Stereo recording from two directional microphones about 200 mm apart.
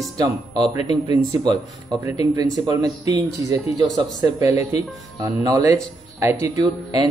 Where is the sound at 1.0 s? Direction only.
30° left (ahead or behind).